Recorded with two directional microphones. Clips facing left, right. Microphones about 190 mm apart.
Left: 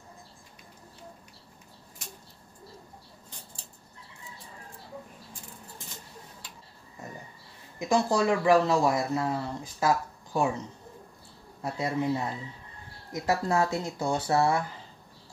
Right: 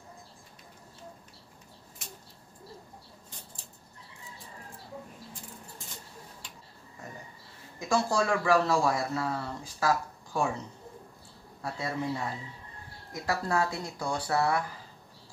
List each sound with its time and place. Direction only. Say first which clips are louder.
7.9 s a man's voice: left 3 dB; 20° left (ahead or behind)
11.6 s a man's voice: left 4 dB; 20° left (ahead or behind)